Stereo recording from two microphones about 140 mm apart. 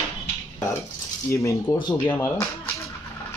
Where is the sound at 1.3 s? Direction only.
20° left (ahead or behind).